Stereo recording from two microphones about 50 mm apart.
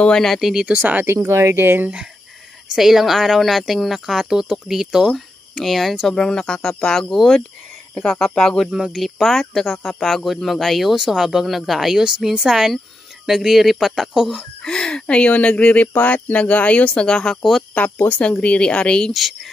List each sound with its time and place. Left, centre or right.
0.4 s speech: centre
0.7 s speech: right
1.0 s speech: right
2.7 s speech: centre
5.1 s speech: centre
8.6 s speech: centre
14.3 s speech: centre
17.4 s speech: centre
17.7 s speech: left; by 19.1 s centre
19.1 s speech: centre